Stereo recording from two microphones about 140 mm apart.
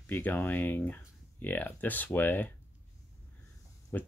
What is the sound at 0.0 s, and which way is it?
Speech, 10° left (ahead or behind).